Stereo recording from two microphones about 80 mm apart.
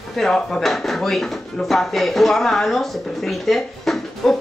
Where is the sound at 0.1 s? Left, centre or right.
Centre.